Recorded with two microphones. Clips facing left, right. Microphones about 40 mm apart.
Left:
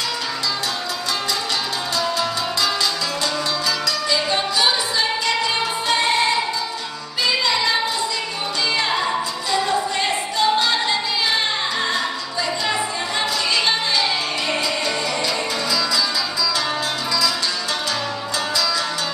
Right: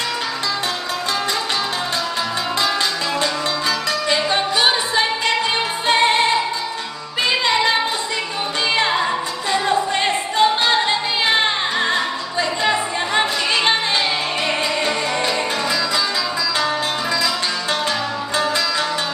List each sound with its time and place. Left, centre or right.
4.1 s music: right
7.2 s music: right
9.5 s music: right